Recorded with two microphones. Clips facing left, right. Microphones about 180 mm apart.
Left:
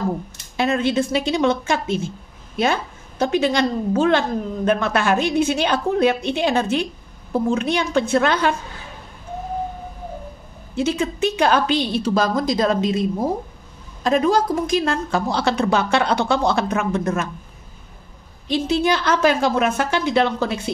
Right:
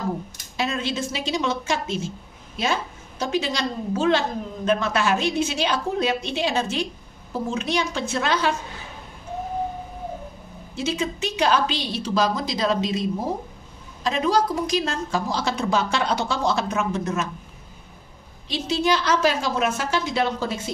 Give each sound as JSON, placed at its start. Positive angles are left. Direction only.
{"t": 0.6, "sound": "a woman's voice", "side_deg": 55}
{"t": 10.8, "sound": "a woman's voice", "side_deg": 55}
{"t": 14.0, "sound": "a woman's voice", "side_deg": 50}
{"t": 18.5, "sound": "a woman's voice", "side_deg": 55}